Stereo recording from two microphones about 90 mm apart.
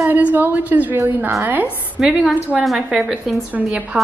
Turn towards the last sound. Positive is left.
turn(degrees=-15)  # may be behind; listen again after turning